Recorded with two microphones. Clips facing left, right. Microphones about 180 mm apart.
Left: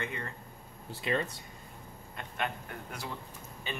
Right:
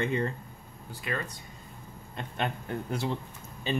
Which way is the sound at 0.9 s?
25° left (ahead or behind).